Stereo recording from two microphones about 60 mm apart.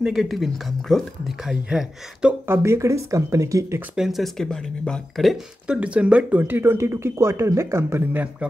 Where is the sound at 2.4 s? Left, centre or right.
Right.